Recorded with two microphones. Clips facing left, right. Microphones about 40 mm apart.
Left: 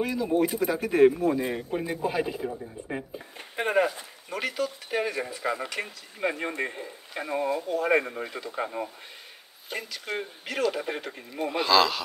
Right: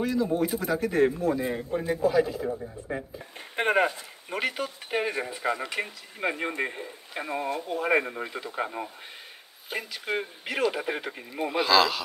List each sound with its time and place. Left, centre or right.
0.0 s speech: centre
2.0 s speech: left
3.3 s speech: right
5.4 s speech: centre